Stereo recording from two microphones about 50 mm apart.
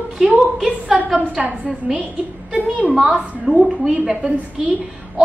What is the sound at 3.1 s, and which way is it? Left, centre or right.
Speech, right.